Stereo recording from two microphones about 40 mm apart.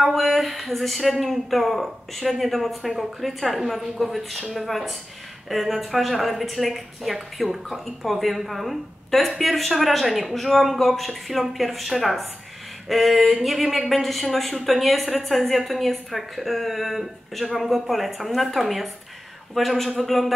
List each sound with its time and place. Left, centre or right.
0.0 s speech: centre